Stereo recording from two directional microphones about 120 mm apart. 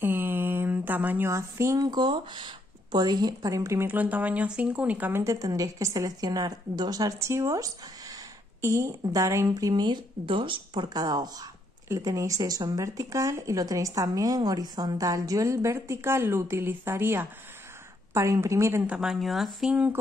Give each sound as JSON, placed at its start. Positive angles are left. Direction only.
{"t": 0.0, "sound": "speech", "side_deg": -15}
{"t": 18.9, "sound": "speech", "side_deg": -5}